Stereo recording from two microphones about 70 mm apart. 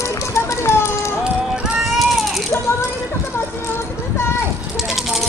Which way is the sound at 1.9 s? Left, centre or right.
Centre.